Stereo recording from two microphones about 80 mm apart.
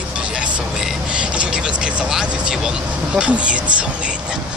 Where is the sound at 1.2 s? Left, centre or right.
Centre.